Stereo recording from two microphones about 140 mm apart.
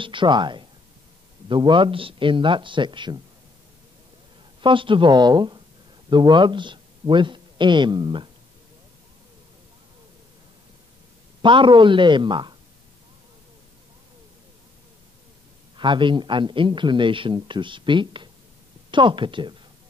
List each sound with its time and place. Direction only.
0.0 s speech: 35° right (ahead or behind)
4.6 s speech: 35° right (ahead or behind)
11.4 s speech: 35° right (ahead or behind)
15.8 s speech: 35° right (ahead or behind)